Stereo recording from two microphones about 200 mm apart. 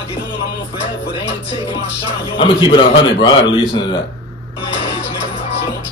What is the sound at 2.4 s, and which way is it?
A man's voice, 25° left (ahead or behind).